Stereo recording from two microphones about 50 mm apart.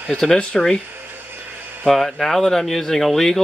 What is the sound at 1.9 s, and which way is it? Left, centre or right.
Speech, centre.